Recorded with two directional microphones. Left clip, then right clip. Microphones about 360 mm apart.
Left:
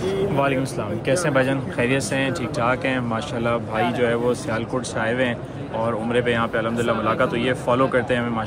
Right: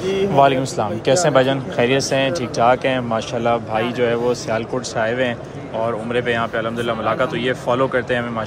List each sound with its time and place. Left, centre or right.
0.4 s speech: centre